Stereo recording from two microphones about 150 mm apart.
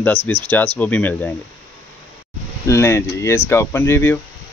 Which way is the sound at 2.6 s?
20° left (ahead or behind).